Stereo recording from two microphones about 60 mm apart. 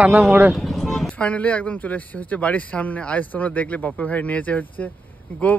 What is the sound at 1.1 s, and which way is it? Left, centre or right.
Speech, left.